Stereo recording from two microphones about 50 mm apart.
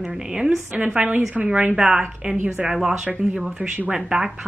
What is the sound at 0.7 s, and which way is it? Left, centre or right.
Speech, right.